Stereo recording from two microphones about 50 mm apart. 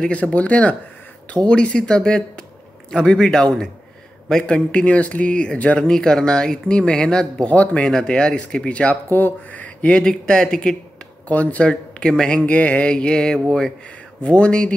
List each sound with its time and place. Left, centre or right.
0.0 s speech: left
5.9 s speech: centre
7.9 s speech: centre
9.1 s speech: left
10.0 s speech: centre
11.2 s speech: left
11.7 s speech: centre
14.2 s speech: left